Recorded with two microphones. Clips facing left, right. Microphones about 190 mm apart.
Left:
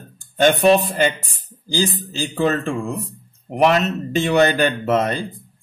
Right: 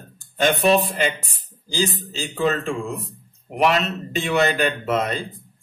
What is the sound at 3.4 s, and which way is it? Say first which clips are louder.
Speech: left 3 dB; 45° left (ahead or behind).